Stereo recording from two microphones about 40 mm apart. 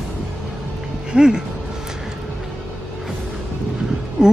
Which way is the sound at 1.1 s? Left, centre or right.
Centre.